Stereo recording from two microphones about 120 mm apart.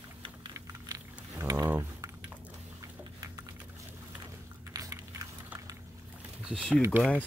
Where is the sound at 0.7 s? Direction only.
25° right (ahead or behind).